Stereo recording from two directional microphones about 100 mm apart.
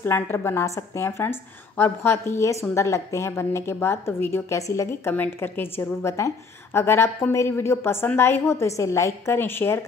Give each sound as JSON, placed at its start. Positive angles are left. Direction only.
{"t": 0.0, "sound": "a woman's voice", "side_deg": 20}
{"t": 5.1, "sound": "a woman's voice", "side_deg": 20}